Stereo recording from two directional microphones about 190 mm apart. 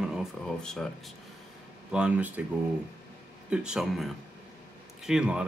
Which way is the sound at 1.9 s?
5° right (ahead or behind).